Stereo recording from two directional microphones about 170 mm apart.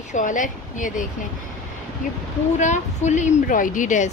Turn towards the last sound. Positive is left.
turn(degrees=50)  # may be behind; listen again after turning